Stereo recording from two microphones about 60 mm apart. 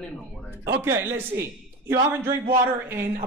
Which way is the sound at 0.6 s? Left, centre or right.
Right.